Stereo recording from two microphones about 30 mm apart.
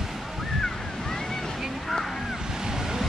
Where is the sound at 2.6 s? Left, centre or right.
Centre.